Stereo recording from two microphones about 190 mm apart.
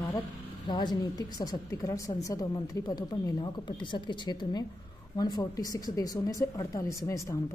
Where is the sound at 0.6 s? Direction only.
20° left (ahead or behind).